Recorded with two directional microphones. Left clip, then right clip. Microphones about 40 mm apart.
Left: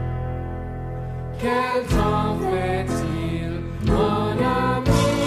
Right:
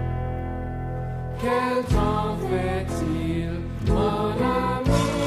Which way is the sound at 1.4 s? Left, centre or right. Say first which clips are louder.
Left 1 dB; left.